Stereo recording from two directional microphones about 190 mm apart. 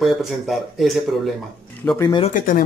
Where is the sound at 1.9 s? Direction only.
15° left (ahead or behind).